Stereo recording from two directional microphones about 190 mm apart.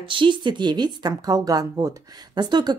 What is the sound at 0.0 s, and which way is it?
A woman's voice, 25° right (ahead or behind).